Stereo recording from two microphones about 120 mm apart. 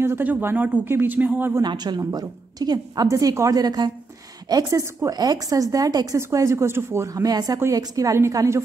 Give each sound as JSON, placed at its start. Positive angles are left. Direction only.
{"t": 0.0, "sound": "speech", "side_deg": -15}
{"t": 1.6, "sound": "a woman's voice", "side_deg": -35}